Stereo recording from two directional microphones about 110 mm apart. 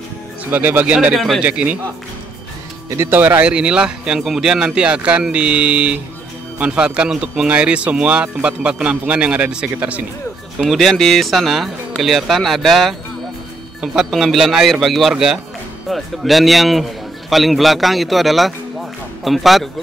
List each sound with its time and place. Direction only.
0.5 s speech: 15° right (ahead or behind)
1.1 s a man's voice: centre (ahead or behind)
1.4 s speech: 15° right (ahead or behind)
3.0 s speech: 15° right (ahead or behind)
10.6 s a man's voice: centre (ahead or behind)